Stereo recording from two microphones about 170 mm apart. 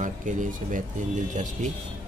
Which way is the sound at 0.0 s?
50° right (ahead or behind).